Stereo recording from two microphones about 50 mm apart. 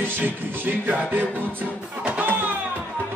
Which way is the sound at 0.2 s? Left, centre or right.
Right.